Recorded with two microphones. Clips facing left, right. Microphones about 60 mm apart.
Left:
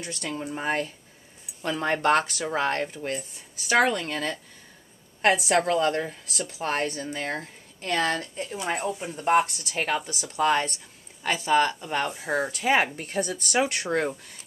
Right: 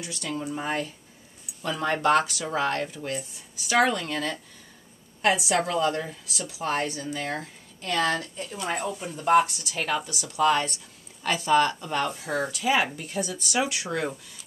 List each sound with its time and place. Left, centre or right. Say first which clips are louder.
0.0 s speech: even; left
5.2 s a woman's voice: left 2 dB; left
8.5 s speech: left 1 dB; centre
11.2 s speech: right 1 dB; centre
12.5 s speech: left 1 dB; left